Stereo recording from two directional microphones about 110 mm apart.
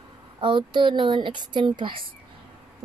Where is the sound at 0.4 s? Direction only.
45° right (ahead or behind).